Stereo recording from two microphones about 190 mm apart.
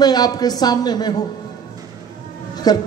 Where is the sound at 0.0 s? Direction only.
20° left (ahead or behind).